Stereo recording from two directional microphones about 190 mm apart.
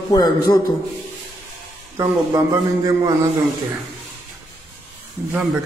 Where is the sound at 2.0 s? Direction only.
15° right (ahead or behind).